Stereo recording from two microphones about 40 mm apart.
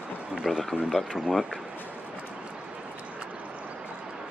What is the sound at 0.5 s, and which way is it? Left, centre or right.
Speech, centre.